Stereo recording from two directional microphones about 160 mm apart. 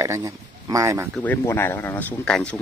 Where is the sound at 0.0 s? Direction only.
20° right (ahead or behind).